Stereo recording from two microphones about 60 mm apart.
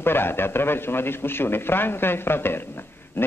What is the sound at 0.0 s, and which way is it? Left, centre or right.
Speech, left.